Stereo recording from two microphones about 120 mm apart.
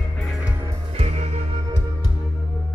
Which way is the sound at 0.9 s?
65° right (ahead or behind).